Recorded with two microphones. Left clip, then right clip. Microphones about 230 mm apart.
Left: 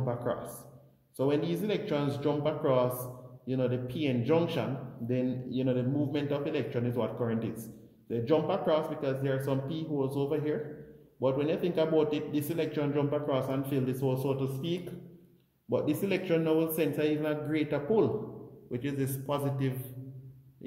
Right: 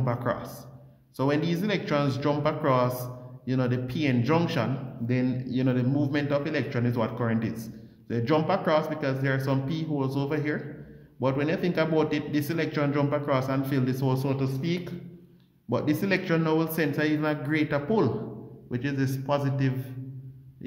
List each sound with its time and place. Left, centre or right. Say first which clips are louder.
0.0 s a man's voice: right 4 dB; right